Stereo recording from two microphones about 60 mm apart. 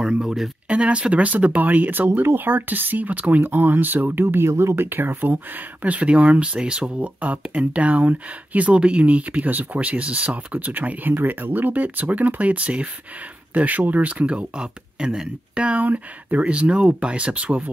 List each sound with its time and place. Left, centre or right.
0.0 s speech: centre